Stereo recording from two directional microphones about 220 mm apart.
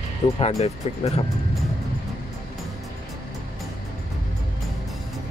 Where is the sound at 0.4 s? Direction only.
30° left (ahead or behind).